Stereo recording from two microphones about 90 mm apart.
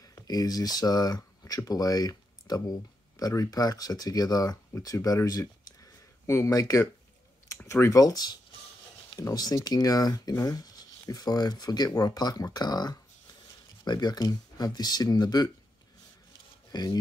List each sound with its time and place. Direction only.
0.0 s speech: 45° left (ahead or behind)
16.7 s speech: 45° left (ahead or behind)